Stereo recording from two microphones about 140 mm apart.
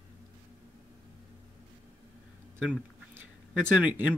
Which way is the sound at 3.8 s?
10° right (ahead or behind).